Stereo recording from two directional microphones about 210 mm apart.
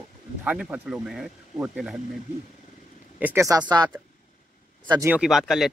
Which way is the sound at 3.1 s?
10° right (ahead or behind).